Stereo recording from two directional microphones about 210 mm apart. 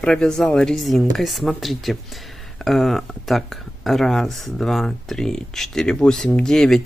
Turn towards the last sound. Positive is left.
turn(degrees=0)  # may be behind; listen again after turning